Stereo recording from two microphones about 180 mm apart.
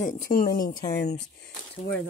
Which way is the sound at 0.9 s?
65° left (ahead or behind).